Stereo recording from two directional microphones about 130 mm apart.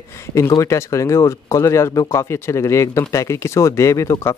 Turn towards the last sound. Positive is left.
turn(degrees=25)  # may be behind; listen again after turning